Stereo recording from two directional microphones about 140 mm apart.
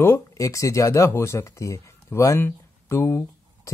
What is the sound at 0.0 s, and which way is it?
Speech, 20° left (ahead or behind).